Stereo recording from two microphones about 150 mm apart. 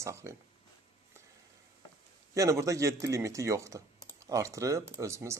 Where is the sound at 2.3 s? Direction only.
20° right (ahead or behind).